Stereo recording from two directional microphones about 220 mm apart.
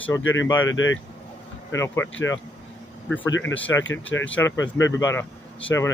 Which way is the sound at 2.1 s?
60° left (ahead or behind).